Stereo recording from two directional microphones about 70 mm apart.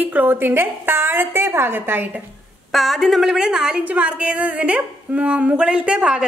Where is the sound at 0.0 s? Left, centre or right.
Right.